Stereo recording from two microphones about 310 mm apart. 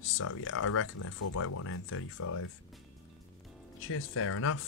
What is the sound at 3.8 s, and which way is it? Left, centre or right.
Speech, left.